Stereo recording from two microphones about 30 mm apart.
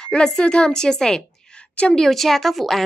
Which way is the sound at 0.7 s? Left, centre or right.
Left.